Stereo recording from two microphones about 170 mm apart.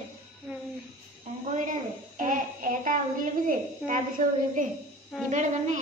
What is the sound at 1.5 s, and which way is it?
A child's voice, 50° right (ahead or behind).